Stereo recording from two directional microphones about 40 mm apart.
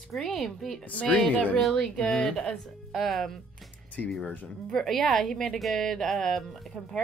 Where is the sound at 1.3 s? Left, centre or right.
Left.